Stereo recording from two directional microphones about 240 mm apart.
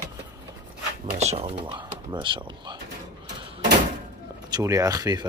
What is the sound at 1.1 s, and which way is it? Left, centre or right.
Speech, right.